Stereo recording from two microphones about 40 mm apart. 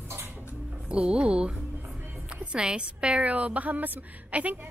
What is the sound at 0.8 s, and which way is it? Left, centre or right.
A woman's voice, right.